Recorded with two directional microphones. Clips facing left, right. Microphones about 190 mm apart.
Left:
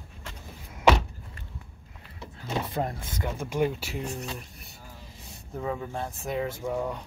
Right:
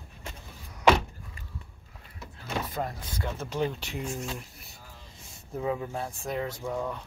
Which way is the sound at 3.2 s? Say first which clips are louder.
Left 3 dB; 10° left (ahead or behind).